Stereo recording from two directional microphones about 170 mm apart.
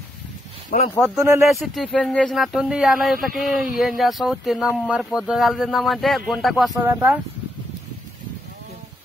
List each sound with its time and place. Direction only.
0.7 s speech: 40° left (ahead or behind)
0.9 s speech: centre (ahead or behind)
6.8 s speech: 10° right (ahead or behind)